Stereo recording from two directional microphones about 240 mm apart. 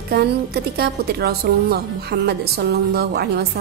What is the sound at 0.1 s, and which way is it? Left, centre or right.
A woman's voice, right.